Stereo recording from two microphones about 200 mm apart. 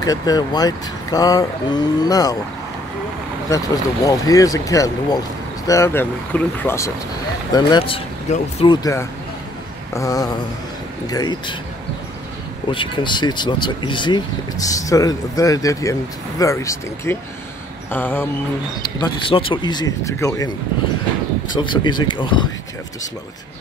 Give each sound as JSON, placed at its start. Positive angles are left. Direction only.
{"t": 0.0, "sound": "speech", "side_deg": 20}
{"t": 3.4, "sound": "speech", "side_deg": 15}
{"t": 7.5, "sound": "speech", "side_deg": 25}
{"t": 9.9, "sound": "speech", "side_deg": 15}
{"t": 12.7, "sound": "speech", "side_deg": 25}
{"t": 21.5, "sound": "speech", "side_deg": 25}